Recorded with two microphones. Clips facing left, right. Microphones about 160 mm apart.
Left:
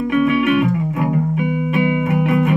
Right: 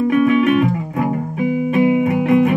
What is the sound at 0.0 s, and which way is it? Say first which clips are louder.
Music: right 2 dB; 35° right (ahead or behind).